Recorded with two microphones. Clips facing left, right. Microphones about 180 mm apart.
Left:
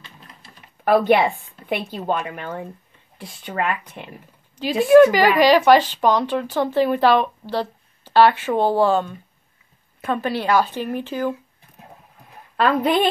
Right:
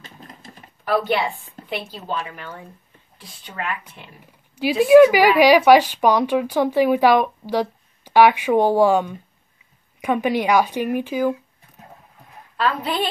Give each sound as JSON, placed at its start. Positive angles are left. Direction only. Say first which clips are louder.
{"t": 0.0, "sound": "typing", "louder": "right 4 dB", "side_deg": -45}
{"t": 0.8, "sound": "a woman's voice", "louder": "left 5 dB", "side_deg": 55}
{"t": 4.6, "sound": "a woman's voice", "louder": "right 1 dB", "side_deg": -10}
{"t": 12.5, "sound": "speech", "louder": "left 5 dB", "side_deg": 55}